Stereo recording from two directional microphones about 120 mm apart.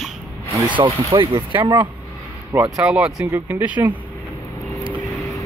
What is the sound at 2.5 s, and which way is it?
Speech, 10° right (ahead or behind).